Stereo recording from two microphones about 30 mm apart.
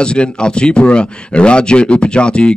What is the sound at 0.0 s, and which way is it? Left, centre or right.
Speech, left.